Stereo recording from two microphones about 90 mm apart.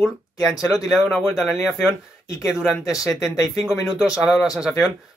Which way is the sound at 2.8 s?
40° left (ahead or behind).